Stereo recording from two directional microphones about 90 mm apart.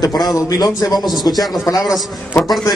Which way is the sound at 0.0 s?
45° left (ahead or behind).